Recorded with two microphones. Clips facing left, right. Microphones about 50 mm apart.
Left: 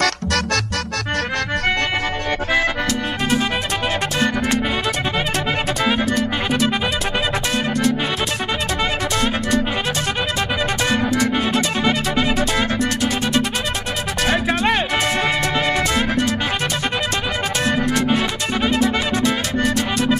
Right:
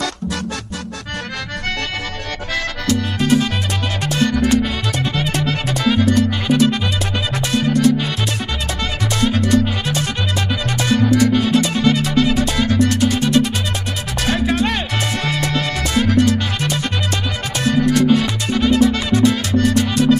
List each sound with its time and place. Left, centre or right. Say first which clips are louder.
0.0 s music: left 3 dB; left
6.0 s music: right 4 dB; centre
11.5 s music: right 3 dB; centre
12.7 s music: right 4 dB; centre